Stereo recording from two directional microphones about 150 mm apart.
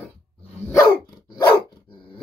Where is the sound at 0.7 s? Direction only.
25° left (ahead or behind).